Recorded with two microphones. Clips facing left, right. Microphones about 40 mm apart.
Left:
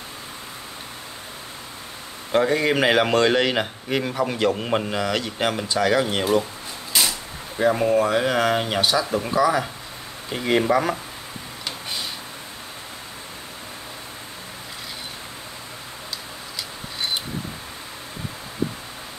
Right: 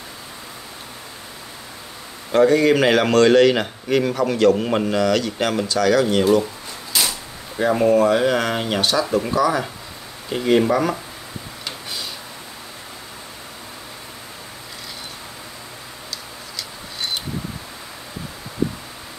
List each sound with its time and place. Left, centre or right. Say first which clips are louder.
2.3 s a man's voice: right 5 dB; centre
5.7 s a man's voice: right 4 dB; left
7.0 s a man's voice: even; centre